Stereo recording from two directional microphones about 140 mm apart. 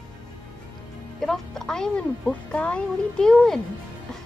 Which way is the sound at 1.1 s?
Centre (ahead or behind).